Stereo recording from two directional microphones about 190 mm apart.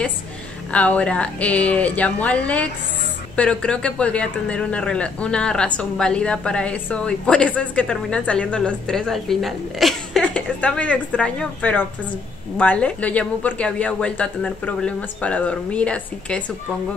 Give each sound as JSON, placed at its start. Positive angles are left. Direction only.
{"t": 0.7, "sound": "a woman's voice", "side_deg": 5}